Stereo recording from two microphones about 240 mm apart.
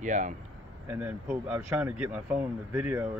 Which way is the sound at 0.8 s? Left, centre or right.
Centre.